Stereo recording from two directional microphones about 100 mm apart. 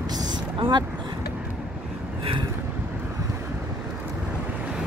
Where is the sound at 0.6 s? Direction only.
50° right (ahead or behind).